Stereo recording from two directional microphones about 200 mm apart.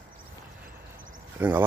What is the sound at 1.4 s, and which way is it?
Speech, 10° right (ahead or behind).